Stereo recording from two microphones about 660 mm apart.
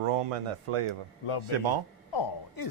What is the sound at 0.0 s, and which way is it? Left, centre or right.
Speech, right.